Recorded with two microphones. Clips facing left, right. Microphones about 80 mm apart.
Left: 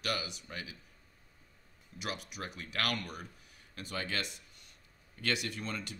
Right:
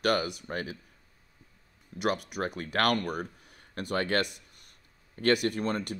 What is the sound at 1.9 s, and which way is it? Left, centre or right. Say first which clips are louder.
Speech: right 11 dB; right.